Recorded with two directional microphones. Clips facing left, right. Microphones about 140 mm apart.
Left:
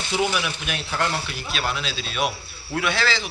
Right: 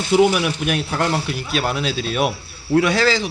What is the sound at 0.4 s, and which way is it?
Speech, 50° right (ahead or behind).